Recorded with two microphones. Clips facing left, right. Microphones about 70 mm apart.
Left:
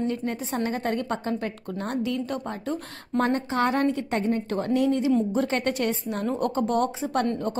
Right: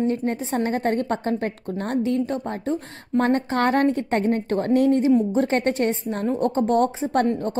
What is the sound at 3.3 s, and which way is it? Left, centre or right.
A woman's voice, right.